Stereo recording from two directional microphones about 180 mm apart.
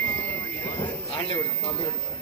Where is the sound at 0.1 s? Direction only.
10° left (ahead or behind).